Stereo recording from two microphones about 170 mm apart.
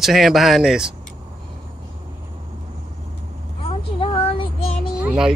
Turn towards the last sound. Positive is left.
turn(degrees=-5)  # may be behind; listen again after turning